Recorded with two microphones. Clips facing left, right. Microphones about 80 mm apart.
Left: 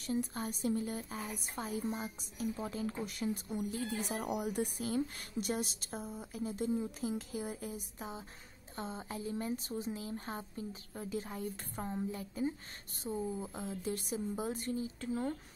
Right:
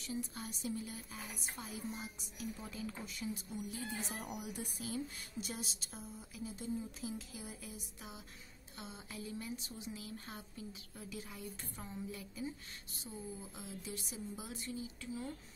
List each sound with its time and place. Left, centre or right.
0.0 s speech: left
3.1 s speech: left